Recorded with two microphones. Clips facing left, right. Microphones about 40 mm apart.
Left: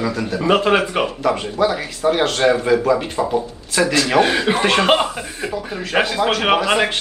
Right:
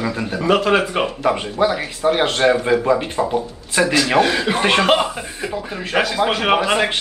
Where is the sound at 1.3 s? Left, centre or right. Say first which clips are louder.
Right 1 dB; centre.